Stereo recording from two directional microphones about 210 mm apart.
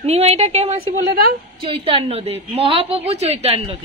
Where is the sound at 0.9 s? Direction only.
40° right (ahead or behind).